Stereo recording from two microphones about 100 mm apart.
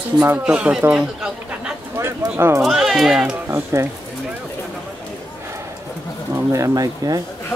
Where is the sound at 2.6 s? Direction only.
5° right (ahead or behind).